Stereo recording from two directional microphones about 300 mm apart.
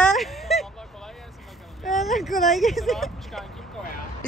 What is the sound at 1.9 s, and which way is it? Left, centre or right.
Speech, centre.